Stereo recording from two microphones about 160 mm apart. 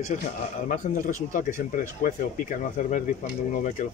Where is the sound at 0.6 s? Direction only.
55° left (ahead or behind).